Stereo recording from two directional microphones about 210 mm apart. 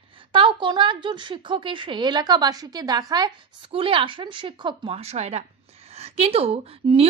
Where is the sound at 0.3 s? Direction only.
25° right (ahead or behind).